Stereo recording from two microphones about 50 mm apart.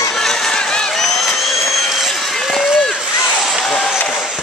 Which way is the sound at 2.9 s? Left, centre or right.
Centre.